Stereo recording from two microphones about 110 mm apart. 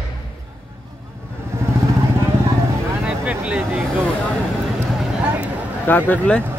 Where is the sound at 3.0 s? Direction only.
10° right (ahead or behind).